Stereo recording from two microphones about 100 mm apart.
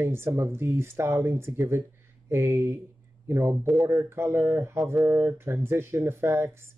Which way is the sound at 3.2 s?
25° right (ahead or behind).